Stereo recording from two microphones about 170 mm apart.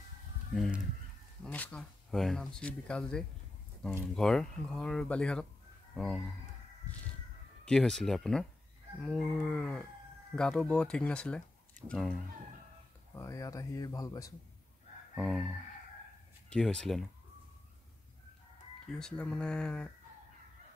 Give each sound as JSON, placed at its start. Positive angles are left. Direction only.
{"t": 0.6, "sound": "speech", "side_deg": -5}
{"t": 1.4, "sound": "speech", "side_deg": 10}
{"t": 7.6, "sound": "speech", "side_deg": 5}
{"t": 13.1, "sound": "speech", "side_deg": 20}
{"t": 15.1, "sound": "speech", "side_deg": 0}
{"t": 18.9, "sound": "speech", "side_deg": 5}